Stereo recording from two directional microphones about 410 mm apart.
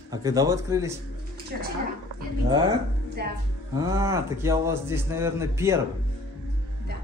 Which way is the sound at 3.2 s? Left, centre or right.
Right.